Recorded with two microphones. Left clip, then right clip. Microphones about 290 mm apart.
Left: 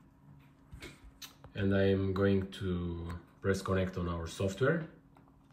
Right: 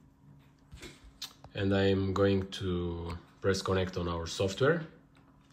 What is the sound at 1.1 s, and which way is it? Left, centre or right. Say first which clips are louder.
Speech: right 5 dB; centre.